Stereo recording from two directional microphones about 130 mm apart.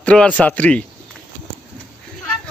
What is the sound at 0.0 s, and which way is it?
Speech, 10° left (ahead or behind).